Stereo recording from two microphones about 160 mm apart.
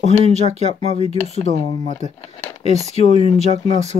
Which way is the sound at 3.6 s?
45° right (ahead or behind).